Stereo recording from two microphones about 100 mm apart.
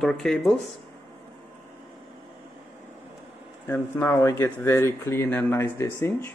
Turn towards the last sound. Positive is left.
turn(degrees=25)  # may be behind; listen again after turning